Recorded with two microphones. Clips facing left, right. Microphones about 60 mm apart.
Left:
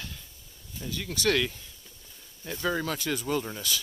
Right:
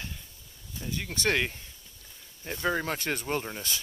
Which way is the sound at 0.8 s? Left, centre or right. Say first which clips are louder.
Left 1 dB; right.